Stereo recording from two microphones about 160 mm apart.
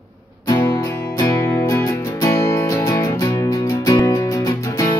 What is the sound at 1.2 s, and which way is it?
Music, 25° left (ahead or behind).